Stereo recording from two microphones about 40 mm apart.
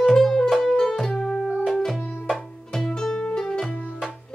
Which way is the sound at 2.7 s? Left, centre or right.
Centre.